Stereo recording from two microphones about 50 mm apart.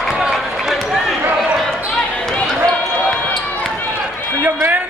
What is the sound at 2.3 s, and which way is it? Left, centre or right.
Basketball bounce, left.